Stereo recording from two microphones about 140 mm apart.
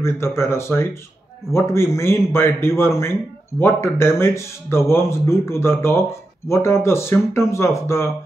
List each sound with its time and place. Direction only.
0.0 s a man's voice: 20° left (ahead or behind)